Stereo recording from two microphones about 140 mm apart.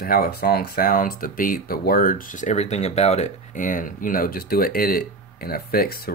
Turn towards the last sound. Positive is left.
turn(degrees=90)